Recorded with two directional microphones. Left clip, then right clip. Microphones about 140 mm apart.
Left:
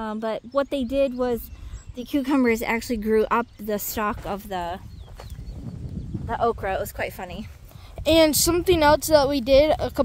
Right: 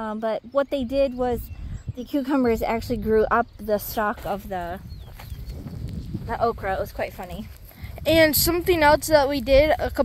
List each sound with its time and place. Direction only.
0.0 s speech: 40° left (ahead or behind)
2.0 s speech: 55° left (ahead or behind)
6.6 s speech: 55° left (ahead or behind); by 7.4 s 40° left (ahead or behind)
8.0 s speech: 25° left (ahead or behind)